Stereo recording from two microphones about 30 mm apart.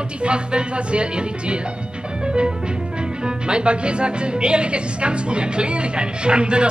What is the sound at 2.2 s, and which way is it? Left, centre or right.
Music, right.